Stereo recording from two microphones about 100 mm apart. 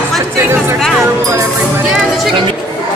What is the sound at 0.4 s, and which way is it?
Chatter, 25° right (ahead or behind).